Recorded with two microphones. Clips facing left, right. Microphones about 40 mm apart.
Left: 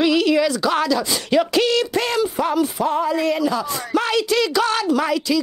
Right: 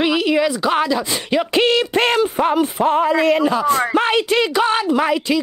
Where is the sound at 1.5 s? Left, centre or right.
Right.